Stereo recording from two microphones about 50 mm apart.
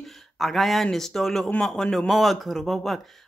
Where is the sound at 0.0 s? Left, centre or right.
Centre.